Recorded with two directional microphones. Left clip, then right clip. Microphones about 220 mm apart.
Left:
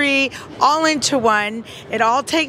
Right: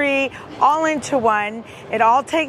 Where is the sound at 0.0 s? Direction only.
40° left (ahead or behind).